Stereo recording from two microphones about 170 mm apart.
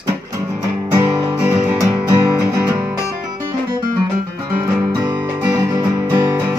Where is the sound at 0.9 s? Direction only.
20° right (ahead or behind).